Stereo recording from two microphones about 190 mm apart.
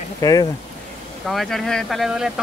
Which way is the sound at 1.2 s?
Centre (ahead or behind).